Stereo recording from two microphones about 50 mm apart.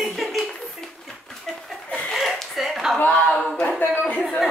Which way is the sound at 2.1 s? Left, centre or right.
Centre.